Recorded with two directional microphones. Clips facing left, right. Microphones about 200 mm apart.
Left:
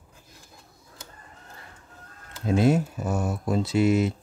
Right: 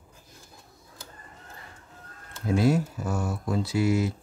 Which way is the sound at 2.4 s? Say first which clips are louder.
Left 2 dB; 20° left (ahead or behind).